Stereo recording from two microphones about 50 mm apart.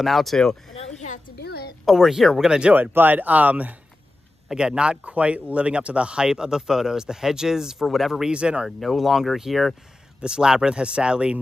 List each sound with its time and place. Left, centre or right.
0.0 s speech: centre
1.9 s speech: centre
2.7 s speech: right
4.5 s speech: centre
8.3 s speech: right
8.6 s speech: centre
10.2 s speech: centre